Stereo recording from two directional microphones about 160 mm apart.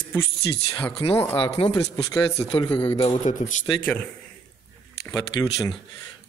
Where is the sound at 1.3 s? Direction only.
35° left (ahead or behind).